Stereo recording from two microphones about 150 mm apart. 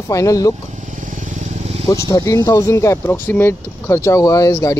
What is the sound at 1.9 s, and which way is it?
Speech, 25° left (ahead or behind).